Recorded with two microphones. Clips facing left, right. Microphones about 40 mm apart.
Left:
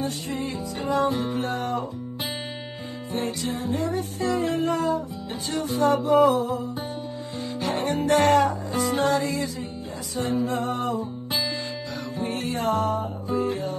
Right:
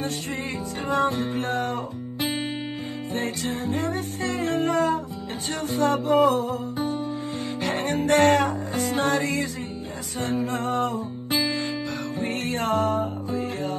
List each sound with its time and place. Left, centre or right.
0.8 s music: right
3.1 s music: right